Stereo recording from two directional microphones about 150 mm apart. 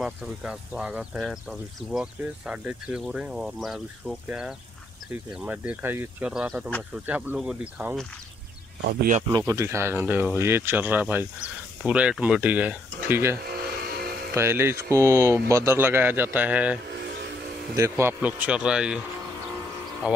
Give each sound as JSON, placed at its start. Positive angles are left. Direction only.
{"t": 0.0, "sound": "speech", "side_deg": -5}
{"t": 9.5, "sound": "speech", "side_deg": -20}
{"t": 13.5, "sound": "vehicle", "side_deg": -90}
{"t": 14.3, "sound": "speech", "side_deg": -15}
{"t": 17.7, "sound": "speech", "side_deg": -20}